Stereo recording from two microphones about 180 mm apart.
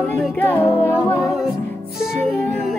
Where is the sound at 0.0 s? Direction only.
10° left (ahead or behind).